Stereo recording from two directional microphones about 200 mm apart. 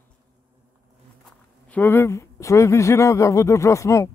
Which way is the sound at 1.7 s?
10° left (ahead or behind).